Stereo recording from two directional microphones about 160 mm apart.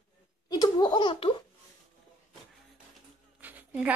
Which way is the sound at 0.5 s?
25° left (ahead or behind).